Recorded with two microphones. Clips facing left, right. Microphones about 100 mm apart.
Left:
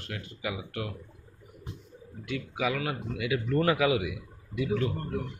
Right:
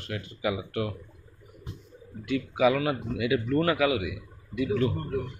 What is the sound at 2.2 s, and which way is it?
Speech, centre (ahead or behind).